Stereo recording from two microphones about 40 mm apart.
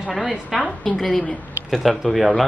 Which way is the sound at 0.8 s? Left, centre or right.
Centre.